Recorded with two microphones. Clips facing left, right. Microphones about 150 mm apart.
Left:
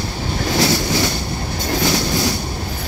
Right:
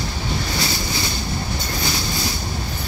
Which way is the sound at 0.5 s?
90° left.